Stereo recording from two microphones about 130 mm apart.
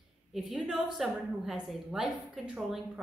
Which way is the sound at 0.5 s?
Centre (ahead or behind).